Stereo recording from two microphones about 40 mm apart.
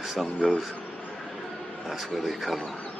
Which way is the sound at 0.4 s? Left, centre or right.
Centre.